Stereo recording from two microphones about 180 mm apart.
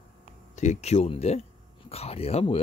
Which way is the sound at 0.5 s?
40° left (ahead or behind).